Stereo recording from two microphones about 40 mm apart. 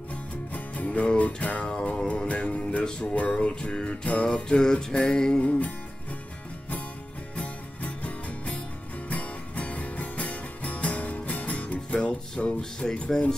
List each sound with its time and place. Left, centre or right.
0.1 s music: left
1.7 s music: left
3.2 s music: left
4.5 s music: centre
5.4 s music: left
7.8 s music: left